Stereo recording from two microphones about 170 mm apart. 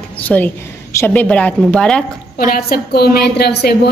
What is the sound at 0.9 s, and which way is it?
A woman's voice, 10° left (ahead or behind).